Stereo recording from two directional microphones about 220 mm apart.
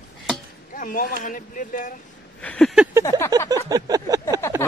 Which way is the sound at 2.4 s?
5° left (ahead or behind).